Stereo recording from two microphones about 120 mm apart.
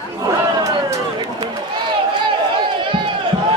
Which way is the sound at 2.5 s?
45° right (ahead or behind).